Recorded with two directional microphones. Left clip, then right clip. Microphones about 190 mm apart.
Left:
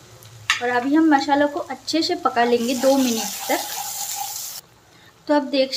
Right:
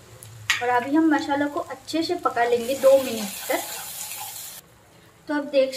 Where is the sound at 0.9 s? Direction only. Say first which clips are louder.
Left 4 dB; 35° left (ahead or behind).